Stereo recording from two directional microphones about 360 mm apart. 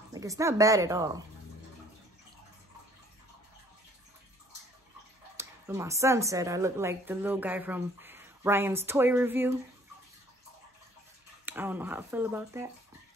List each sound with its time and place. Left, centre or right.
0.1 s a woman's voice: centre
5.4 s a woman's voice: centre
11.4 s speech: centre